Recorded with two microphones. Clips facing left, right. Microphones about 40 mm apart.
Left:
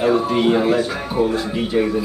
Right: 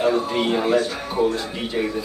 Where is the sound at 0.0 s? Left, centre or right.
Centre.